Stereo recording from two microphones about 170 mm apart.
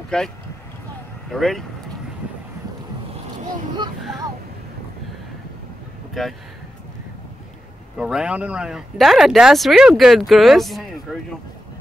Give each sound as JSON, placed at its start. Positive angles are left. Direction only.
{"t": 0.1, "sound": "speech", "side_deg": 5}
{"t": 1.3, "sound": "speech", "side_deg": 0}
{"t": 6.2, "sound": "speech", "side_deg": 0}
{"t": 8.0, "sound": "speech", "side_deg": -5}